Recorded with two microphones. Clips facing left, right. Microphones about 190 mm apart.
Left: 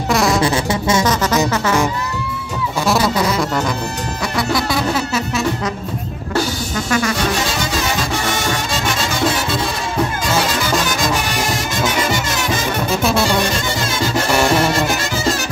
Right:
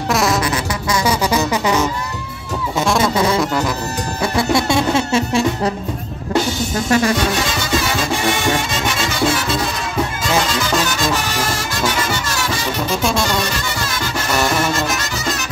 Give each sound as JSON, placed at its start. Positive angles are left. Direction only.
{"t": 0.1, "sound": "music", "side_deg": 0}
{"t": 0.4, "sound": "music", "side_deg": 25}
{"t": 1.0, "sound": "music", "side_deg": -10}
{"t": 4.4, "sound": "music", "side_deg": -25}
{"t": 6.9, "sound": "music", "side_deg": -30}
{"t": 13.0, "sound": "music", "side_deg": 5}